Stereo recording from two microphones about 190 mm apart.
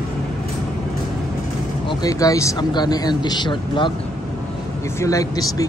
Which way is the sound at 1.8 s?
20° left (ahead or behind).